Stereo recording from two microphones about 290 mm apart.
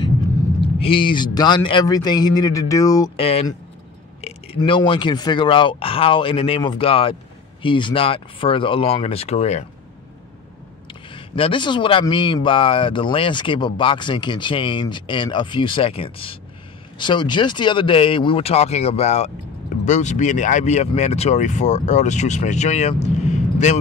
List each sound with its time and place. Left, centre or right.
0.7 s speech: centre
10.9 s speech: centre
23.0 s vehicle: left